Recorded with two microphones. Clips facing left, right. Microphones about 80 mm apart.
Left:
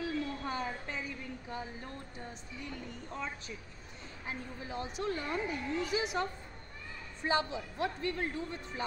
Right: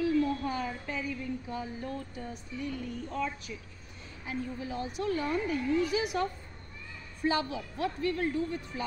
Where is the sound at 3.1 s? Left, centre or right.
Left.